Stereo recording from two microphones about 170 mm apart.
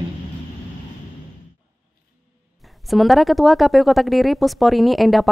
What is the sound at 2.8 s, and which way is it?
Speech, centre (ahead or behind).